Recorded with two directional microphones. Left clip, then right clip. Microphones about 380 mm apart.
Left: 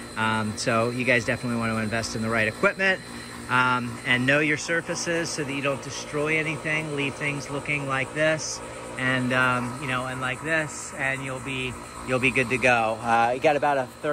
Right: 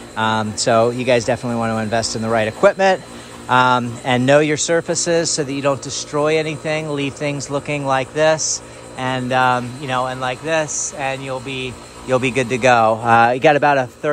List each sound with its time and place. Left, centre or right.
0.1 s speech: centre; by 14.1 s right